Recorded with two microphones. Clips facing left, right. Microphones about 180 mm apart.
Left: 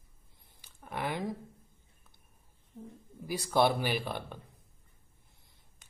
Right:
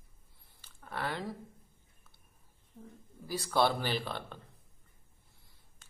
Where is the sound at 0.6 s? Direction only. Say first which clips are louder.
Left 2 dB; 15° left (ahead or behind).